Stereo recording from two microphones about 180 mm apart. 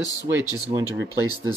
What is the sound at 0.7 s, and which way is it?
Speech, 20° right (ahead or behind).